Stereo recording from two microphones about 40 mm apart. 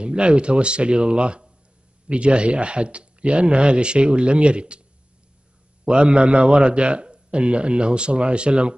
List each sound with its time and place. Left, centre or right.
0.0 s a man's voice: right
5.9 s a man's voice: right